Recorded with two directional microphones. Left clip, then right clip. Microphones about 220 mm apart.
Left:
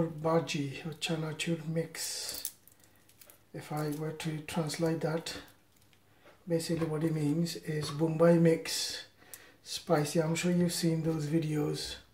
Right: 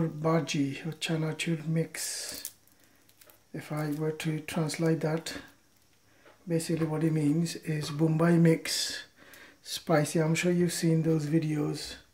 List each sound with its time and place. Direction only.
0.2 s speech: 40° right (ahead or behind)
3.5 s speech: 40° right (ahead or behind)
6.5 s speech: 40° right (ahead or behind)